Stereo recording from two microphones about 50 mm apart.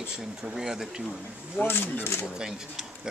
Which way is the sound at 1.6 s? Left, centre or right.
Left.